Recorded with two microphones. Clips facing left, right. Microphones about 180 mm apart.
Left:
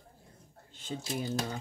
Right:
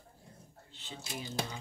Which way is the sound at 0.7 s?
45° left (ahead or behind).